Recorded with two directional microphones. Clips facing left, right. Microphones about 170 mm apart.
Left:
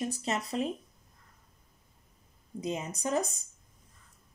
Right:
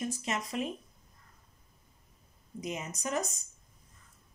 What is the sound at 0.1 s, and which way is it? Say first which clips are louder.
Speech: left 2 dB; 35° left (ahead or behind).